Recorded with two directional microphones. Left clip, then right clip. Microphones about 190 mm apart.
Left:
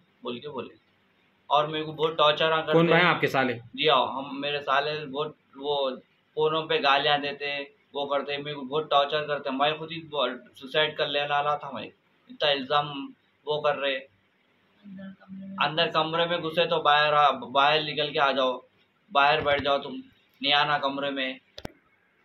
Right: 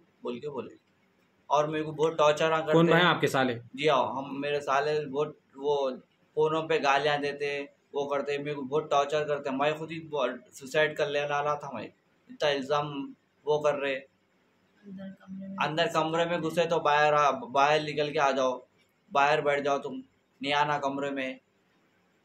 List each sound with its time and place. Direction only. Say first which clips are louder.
0.2 s speech: left 1 dB; 20° right (ahead or behind)
15.5 s speech: left 3 dB; 20° right (ahead or behind)